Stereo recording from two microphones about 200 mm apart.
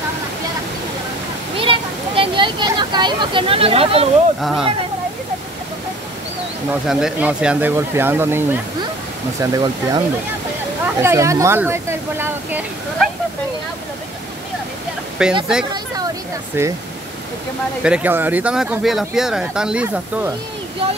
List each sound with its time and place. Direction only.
1.6 s a sound: 25° right (ahead or behind)
4.4 s speech: centre (ahead or behind)
6.9 s speech: 5° right (ahead or behind)
15.2 s speech: 5° right (ahead or behind)
16.6 s speech: 10° right (ahead or behind)
17.8 s speech: 5° right (ahead or behind)